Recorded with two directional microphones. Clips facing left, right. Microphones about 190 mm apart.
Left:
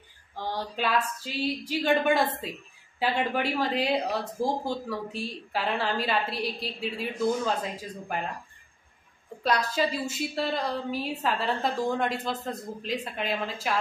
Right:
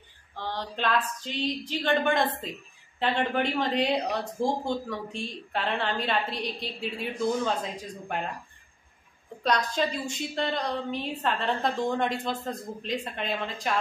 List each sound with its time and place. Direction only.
0.4 s speech: 10° left (ahead or behind)
9.4 s speech: 5° left (ahead or behind)